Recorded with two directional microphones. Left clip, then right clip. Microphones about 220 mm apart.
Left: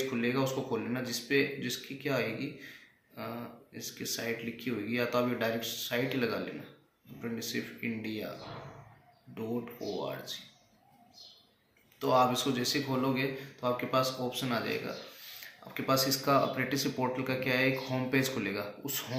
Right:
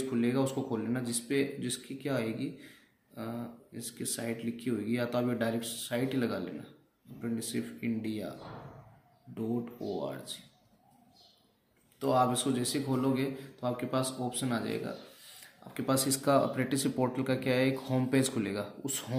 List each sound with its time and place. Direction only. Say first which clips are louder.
0.2 s speech: right 2 dB; 55° right (ahead or behind)
3.7 s speech: left 2 dB; 55° right (ahead or behind)
10.0 s a man's voice: left 1 dB; 55° right (ahead or behind)
12.0 s a man's voice: left 1 dB; 60° right (ahead or behind)